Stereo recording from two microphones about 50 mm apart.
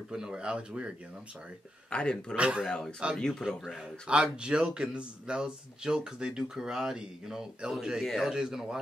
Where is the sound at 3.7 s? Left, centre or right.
Centre.